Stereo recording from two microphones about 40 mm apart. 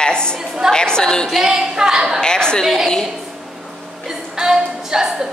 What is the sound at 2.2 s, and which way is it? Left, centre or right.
Speech, centre.